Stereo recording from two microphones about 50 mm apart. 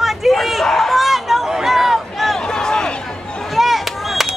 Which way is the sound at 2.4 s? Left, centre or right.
Centre.